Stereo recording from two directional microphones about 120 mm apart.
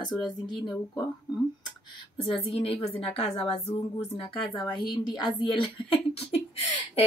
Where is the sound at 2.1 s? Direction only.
50° left (ahead or behind).